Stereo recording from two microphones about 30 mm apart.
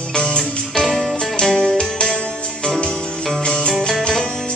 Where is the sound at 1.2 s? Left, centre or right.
Centre.